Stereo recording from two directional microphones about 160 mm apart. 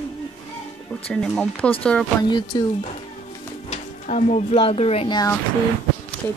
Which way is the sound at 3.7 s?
50° left (ahead or behind).